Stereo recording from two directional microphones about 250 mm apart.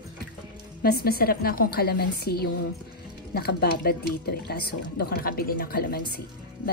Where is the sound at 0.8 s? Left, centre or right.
Left.